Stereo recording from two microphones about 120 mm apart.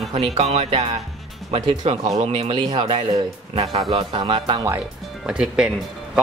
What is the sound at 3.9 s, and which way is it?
Speech, 50° right (ahead or behind).